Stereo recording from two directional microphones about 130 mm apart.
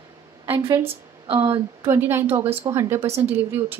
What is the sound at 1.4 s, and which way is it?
A woman's voice, 25° right (ahead or behind).